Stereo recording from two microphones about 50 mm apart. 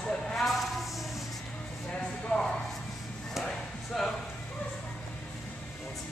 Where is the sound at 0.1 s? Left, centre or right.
Centre.